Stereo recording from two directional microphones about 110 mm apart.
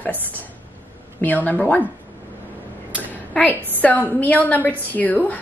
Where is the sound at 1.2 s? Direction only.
15° left (ahead or behind).